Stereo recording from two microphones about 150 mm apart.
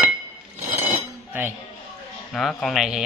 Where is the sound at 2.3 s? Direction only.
5° left (ahead or behind).